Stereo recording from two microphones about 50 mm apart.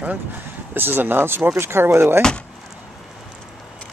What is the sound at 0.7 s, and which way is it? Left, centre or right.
Speech, right.